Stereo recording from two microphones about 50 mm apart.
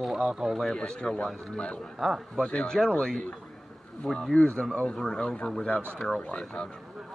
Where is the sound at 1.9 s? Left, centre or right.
Centre.